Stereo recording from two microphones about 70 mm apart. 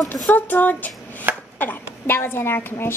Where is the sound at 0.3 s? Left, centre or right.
Left.